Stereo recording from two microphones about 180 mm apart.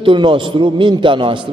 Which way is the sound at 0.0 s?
25° right (ahead or behind).